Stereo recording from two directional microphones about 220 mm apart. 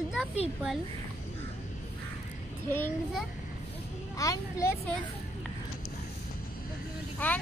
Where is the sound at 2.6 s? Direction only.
10° left (ahead or behind).